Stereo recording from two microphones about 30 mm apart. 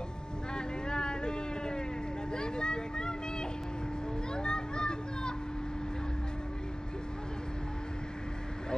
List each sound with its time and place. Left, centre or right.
0.6 s a sound: left
2.3 s vehicle: left
4.3 s children playing: left